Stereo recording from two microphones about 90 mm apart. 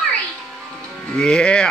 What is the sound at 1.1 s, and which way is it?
Speech, 10° left (ahead or behind).